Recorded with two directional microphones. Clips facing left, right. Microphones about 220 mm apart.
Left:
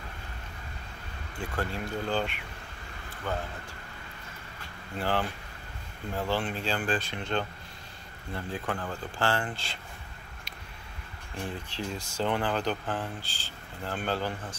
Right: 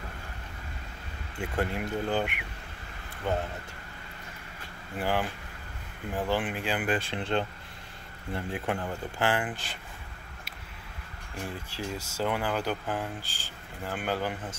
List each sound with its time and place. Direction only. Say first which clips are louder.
1.4 s speech: right 3 dB; 20° right (ahead or behind)
4.9 s speech: even; 10° right (ahead or behind)
8.5 s speech: right 2 dB; 20° right (ahead or behind)
11.4 s speech: left 1 dB; 10° right (ahead or behind)